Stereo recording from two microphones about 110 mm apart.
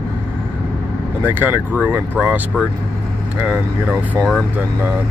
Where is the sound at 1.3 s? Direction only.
15° right (ahead or behind).